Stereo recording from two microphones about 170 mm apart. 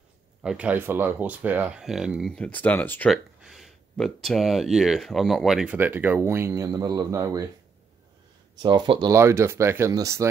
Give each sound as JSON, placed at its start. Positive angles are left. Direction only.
{"t": 0.4, "sound": "speech", "side_deg": -5}
{"t": 3.1, "sound": "speech", "side_deg": 0}
{"t": 8.6, "sound": "speech", "side_deg": -30}
{"t": 9.1, "sound": "speech", "side_deg": -15}